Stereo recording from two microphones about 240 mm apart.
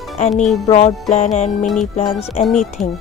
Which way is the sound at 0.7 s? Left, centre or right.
Left.